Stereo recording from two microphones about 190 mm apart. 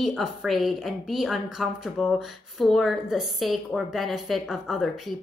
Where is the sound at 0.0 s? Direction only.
Centre (ahead or behind).